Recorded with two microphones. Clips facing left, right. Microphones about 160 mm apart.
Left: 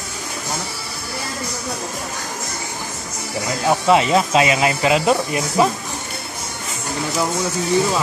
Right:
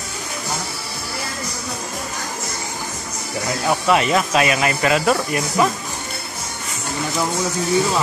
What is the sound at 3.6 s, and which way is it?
Speech, 20° left (ahead or behind).